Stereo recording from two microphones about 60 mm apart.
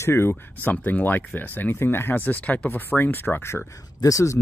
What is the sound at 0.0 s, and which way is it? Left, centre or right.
Speech, left.